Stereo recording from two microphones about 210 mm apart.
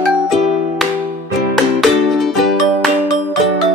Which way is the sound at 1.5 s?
Centre (ahead or behind).